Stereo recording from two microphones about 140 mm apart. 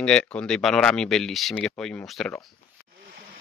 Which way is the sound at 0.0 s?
5° left (ahead or behind).